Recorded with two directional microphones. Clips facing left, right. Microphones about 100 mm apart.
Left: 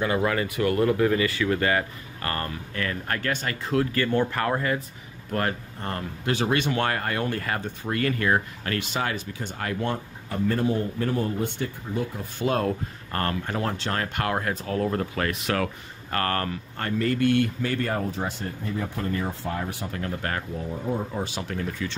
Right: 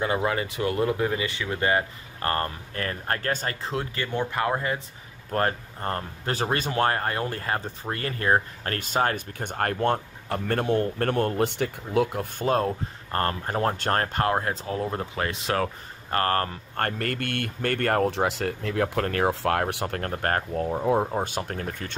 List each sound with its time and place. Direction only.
0.0 s speech: 25° right (ahead or behind)
5.3 s speech: 35° right (ahead or behind); by 12.4 s 65° right (ahead or behind)
12.4 s speech: 30° right (ahead or behind)
16.7 s speech: 55° right (ahead or behind)